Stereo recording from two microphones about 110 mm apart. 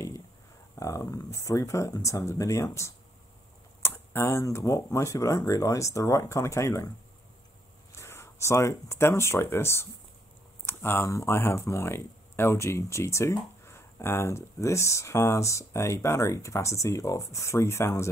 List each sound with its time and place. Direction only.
0.7 s speech: 30° left (ahead or behind)
7.9 s speech: 25° left (ahead or behind)